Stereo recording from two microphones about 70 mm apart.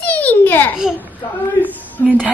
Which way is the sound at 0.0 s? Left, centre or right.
Left.